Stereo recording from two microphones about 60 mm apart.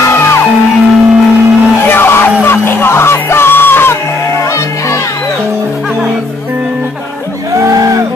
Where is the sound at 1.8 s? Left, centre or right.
Left.